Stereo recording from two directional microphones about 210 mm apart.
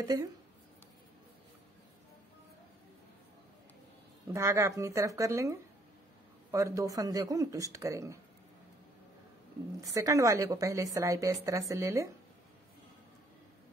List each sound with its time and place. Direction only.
0.0 s a woman's voice: 15° right (ahead or behind)
4.3 s a woman's voice: 15° right (ahead or behind)
9.8 s a woman's voice: 15° right (ahead or behind)